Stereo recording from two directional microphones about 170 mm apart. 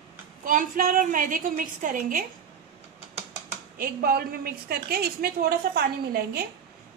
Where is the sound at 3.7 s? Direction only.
60° right (ahead or behind).